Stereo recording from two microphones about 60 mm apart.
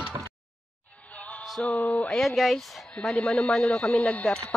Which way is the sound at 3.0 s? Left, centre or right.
Centre.